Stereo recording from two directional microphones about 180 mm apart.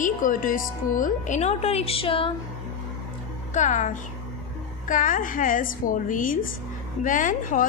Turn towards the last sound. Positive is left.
turn(degrees=45)  # may be behind; listen again after turning